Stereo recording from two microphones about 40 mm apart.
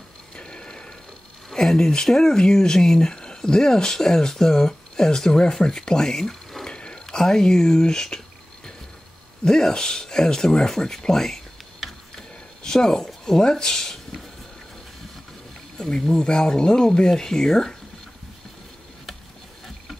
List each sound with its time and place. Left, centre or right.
0.4 s mechanisms: left
1.5 s speech: centre
9.4 s speech: centre
11.8 s a sound: centre
12.6 s speech: centre
15.8 s speech: centre